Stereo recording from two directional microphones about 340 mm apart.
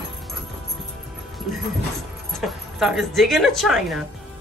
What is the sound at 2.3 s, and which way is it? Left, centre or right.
A woman's voice, centre.